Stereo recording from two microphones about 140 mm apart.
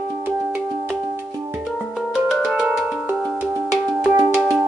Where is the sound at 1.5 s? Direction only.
Centre (ahead or behind).